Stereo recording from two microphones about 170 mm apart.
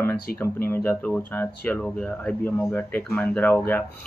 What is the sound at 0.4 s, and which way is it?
Speech, 10° left (ahead or behind).